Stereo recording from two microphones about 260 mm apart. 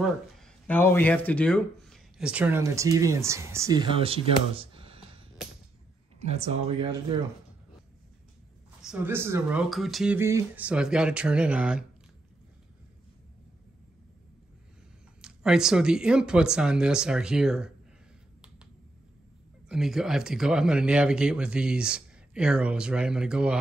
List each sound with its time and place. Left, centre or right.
0.0 s speech: centre; by 5.2 s right
6.2 s speech: right
8.8 s speech: centre
15.2 s speech: centre
19.7 s speech: centre